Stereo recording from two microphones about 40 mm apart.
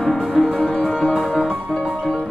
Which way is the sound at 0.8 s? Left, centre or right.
Left.